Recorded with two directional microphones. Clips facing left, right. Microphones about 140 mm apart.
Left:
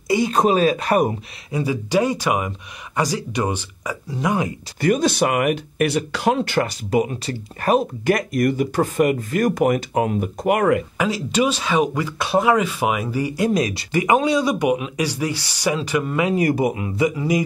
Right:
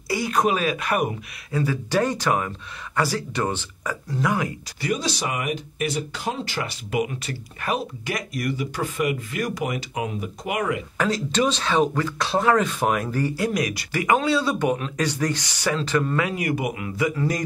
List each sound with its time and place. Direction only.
0.1 s speech: 25° left (ahead or behind)
1.5 s speech: 15° left (ahead or behind)
4.7 s speech: 50° left (ahead or behind)
6.7 s speech: 35° left (ahead or behind); by 10.8 s 55° left (ahead or behind)
11.0 s speech: 10° left (ahead or behind)
13.4 s speech: 25° left (ahead or behind); by 16.2 s 10° left (ahead or behind)
16.3 s speech: 35° left (ahead or behind)
17.1 s speech: 10° left (ahead or behind)